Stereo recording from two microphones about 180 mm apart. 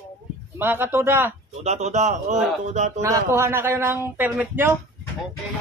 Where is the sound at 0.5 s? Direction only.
10° right (ahead or behind).